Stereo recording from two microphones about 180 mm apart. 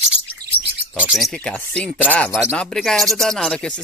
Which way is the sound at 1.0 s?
5° right (ahead or behind).